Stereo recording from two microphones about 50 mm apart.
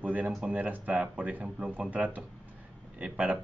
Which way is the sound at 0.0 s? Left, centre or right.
Right.